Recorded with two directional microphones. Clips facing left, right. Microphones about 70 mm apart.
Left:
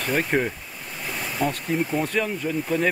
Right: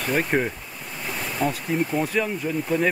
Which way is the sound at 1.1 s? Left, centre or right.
Centre.